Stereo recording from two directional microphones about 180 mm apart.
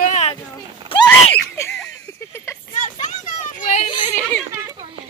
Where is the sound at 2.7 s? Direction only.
40° left (ahead or behind).